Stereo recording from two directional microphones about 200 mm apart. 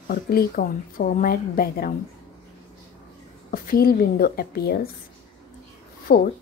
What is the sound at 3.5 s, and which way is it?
Speech, 45° left (ahead or behind).